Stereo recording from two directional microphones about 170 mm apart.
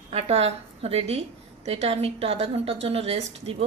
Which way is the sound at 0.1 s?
35° right (ahead or behind).